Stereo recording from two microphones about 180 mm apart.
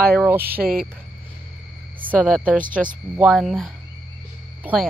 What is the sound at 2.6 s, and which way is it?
Speech, 50° right (ahead or behind).